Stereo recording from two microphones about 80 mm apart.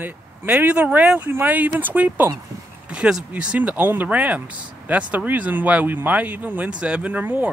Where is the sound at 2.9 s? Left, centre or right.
Centre.